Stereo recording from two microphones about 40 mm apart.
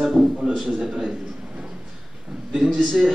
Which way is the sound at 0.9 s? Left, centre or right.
Right.